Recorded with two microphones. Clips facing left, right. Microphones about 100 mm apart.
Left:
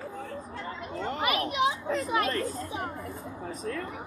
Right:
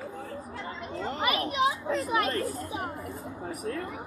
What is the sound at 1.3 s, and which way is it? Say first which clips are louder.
Speech: even; 35° right (ahead or behind).